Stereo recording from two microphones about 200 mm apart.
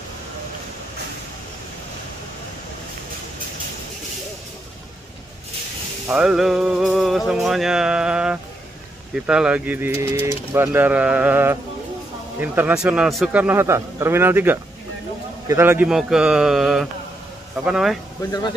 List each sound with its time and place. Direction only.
6.0 s music: 5° right (ahead or behind)
9.1 s speech: 5° right (ahead or behind)
15.4 s music: 10° right (ahead or behind)
18.2 s speech: 15° left (ahead or behind)